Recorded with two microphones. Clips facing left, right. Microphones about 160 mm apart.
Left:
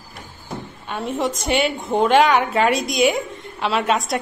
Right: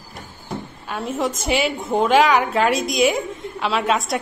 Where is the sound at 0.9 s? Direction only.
Centre (ahead or behind).